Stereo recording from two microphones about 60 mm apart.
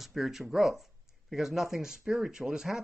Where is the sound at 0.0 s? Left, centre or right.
Centre.